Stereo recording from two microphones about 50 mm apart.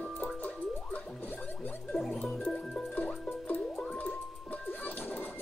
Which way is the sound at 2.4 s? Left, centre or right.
Centre.